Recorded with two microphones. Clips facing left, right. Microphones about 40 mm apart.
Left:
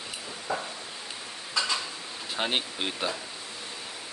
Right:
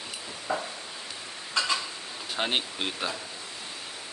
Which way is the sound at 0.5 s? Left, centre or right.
Right.